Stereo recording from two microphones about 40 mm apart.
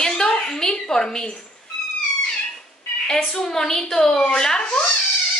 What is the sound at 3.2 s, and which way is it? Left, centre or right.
A woman's voice, centre.